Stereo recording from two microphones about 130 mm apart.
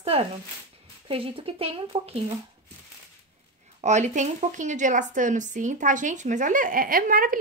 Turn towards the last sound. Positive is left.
turn(degrees=-90)